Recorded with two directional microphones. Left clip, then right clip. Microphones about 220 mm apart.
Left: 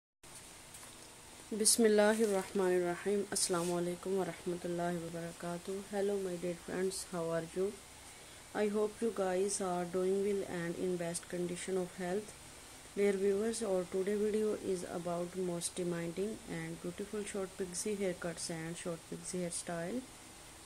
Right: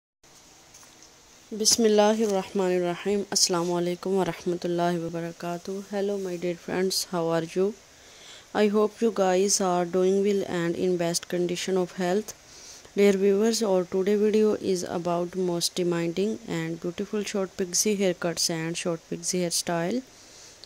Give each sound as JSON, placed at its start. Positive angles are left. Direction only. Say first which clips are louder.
{"t": 1.6, "sound": "speech", "louder": "right 8 dB", "side_deg": -30}